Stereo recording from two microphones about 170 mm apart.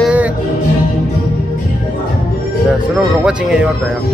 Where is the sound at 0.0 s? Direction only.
10° right (ahead or behind).